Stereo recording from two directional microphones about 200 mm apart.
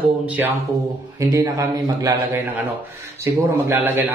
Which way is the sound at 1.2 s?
15° right (ahead or behind).